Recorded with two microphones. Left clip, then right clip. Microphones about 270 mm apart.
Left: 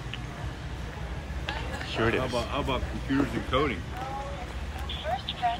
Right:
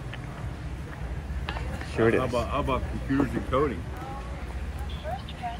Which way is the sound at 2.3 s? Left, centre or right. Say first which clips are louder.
Right 2 dB; right.